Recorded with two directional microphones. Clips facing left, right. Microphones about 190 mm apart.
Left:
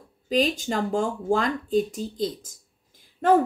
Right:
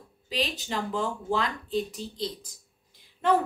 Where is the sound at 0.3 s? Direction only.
45° left (ahead or behind).